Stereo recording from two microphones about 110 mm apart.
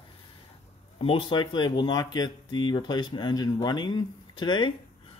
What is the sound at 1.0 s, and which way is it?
Speech, 45° left (ahead or behind).